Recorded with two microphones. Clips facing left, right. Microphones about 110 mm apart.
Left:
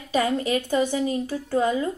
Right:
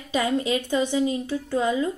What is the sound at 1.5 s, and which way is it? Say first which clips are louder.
Speech: left 1 dB; 35° left (ahead or behind).